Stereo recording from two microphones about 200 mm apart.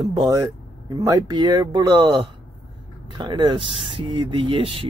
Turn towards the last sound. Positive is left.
turn(degrees=-25)  # may be behind; listen again after turning